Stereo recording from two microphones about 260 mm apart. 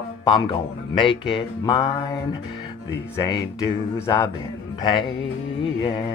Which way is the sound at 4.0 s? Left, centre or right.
Centre.